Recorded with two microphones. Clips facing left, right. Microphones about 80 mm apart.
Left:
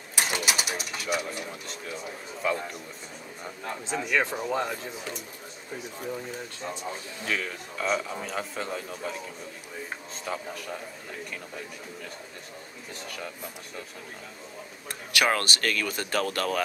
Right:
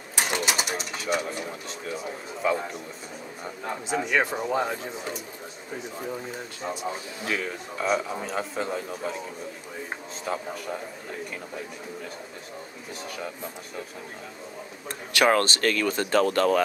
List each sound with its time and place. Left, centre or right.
0.1 s a man's voice: centre
6.6 s a man's voice: centre
10.2 s a man's voice: centre
14.9 s speech: right